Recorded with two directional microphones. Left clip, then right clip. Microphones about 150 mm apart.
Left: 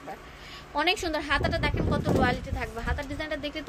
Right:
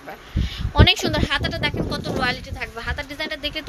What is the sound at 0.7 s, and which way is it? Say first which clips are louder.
A woman's voice: right 8 dB; 5° right (ahead or behind).